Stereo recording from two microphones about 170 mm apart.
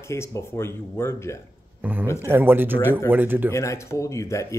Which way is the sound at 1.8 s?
10° right (ahead or behind).